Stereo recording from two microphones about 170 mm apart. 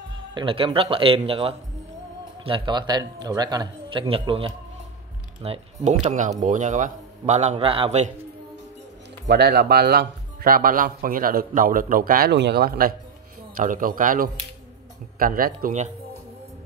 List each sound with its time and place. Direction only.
0.3 s a man's voice: 30° right (ahead or behind)
9.3 s speech: 75° right (ahead or behind); by 15.9 s 50° right (ahead or behind)